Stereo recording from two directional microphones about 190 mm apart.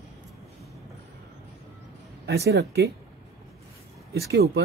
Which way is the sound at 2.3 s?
60° right (ahead or behind).